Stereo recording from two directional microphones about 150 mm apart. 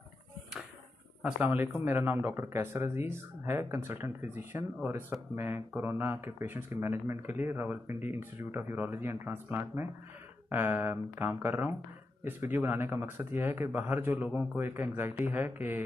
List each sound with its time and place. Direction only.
1.2 s speech: 10° right (ahead or behind)